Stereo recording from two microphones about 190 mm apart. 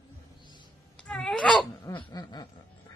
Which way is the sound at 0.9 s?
5° left (ahead or behind).